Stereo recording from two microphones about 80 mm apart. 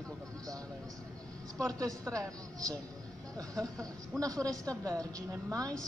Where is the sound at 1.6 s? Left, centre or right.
Right.